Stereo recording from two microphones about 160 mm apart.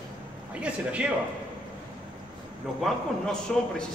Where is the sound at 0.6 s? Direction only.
5° right (ahead or behind).